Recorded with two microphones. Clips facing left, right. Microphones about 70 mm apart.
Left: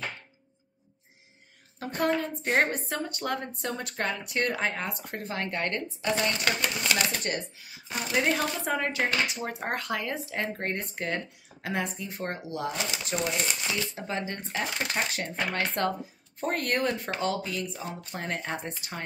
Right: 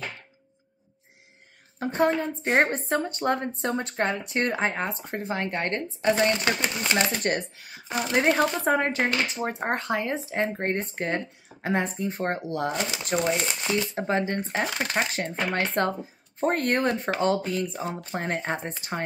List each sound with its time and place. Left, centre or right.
1.8 s a woman's voice: right
7.2 s speech: right
8.3 s speech: right
15.1 s speech: right
17.8 s speech: right